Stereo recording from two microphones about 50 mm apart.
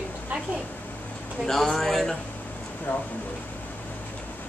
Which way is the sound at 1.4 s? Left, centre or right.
Centre.